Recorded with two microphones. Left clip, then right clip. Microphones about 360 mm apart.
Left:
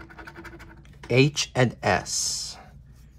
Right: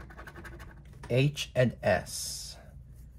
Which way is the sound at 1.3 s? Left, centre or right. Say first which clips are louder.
Left 4 dB; centre.